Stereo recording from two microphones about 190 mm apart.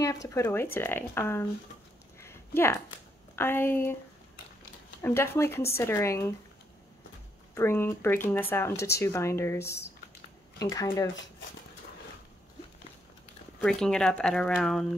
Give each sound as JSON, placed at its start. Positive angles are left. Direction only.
{"t": 0.0, "sound": "speech", "side_deg": 15}
{"t": 2.1, "sound": "a sound", "side_deg": 15}
{"t": 3.3, "sound": "speech", "side_deg": 10}
{"t": 5.0, "sound": "speech", "side_deg": 10}
{"t": 7.5, "sound": "speech", "side_deg": 10}
{"t": 13.6, "sound": "speech", "side_deg": 5}